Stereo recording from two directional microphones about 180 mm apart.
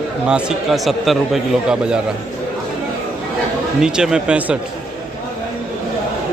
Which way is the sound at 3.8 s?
5° right (ahead or behind).